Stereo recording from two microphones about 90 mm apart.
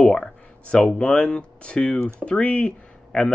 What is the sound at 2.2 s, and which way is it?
Speech, 15° left (ahead or behind).